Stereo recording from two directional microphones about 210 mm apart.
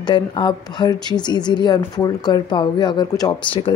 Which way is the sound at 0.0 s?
20° left (ahead or behind).